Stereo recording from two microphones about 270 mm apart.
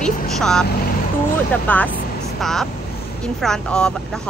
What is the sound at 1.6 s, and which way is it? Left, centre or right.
Speech, centre.